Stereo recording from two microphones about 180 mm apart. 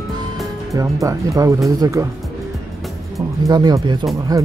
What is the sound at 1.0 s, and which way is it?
Speech, 20° right (ahead or behind).